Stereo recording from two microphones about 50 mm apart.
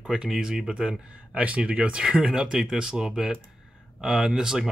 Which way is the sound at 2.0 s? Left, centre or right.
Centre.